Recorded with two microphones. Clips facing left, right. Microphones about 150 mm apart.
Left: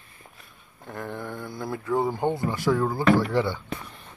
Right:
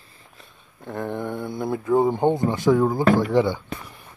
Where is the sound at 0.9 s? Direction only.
20° right (ahead or behind).